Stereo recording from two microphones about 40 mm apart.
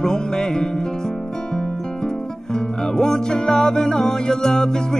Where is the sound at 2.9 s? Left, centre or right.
Centre.